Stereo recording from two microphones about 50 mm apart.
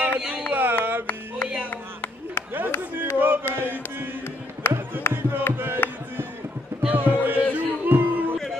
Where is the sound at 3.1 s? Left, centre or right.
Right.